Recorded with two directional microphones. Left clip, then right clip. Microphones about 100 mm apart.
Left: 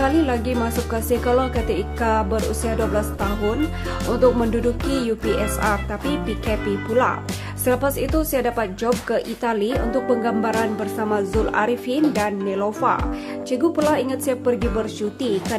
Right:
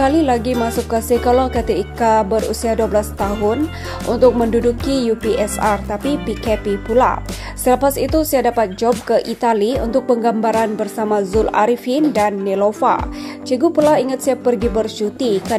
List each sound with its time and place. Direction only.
0.0 s music: 40° right (ahead or behind)
3.2 s speech: centre (ahead or behind)
4.1 s music: 35° right (ahead or behind)
8.2 s a woman's voice: 45° right (ahead or behind)
9.7 s a woman's voice: 5° left (ahead or behind)
10.2 s music: 40° right (ahead or behind)